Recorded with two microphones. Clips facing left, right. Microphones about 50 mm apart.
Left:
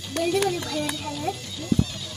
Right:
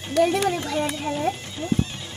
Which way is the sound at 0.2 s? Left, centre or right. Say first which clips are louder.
Right 3 dB; right.